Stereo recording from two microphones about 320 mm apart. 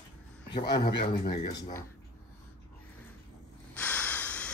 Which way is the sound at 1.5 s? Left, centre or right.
Centre.